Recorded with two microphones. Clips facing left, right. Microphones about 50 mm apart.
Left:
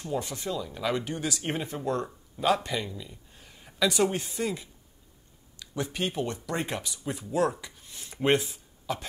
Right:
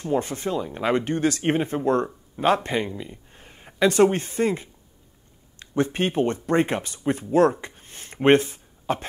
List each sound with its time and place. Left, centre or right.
0.0 s speech: right